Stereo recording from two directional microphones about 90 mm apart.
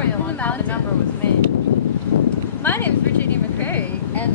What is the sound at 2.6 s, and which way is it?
Speech, 25° left (ahead or behind).